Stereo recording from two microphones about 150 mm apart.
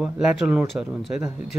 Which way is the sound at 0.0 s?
10° right (ahead or behind).